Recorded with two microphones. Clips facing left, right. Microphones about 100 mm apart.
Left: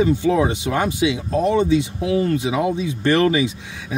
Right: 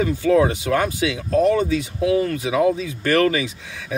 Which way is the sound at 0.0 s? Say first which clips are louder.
Even; 20° left (ahead or behind).